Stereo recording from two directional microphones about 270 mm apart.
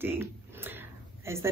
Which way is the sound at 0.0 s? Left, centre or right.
Centre.